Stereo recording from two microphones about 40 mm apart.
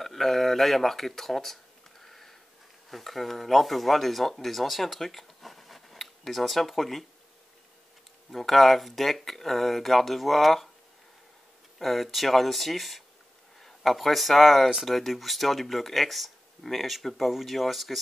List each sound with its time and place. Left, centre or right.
0.0 s a sound: centre
2.9 s speech: centre
8.3 s speech: centre
11.8 s speech: centre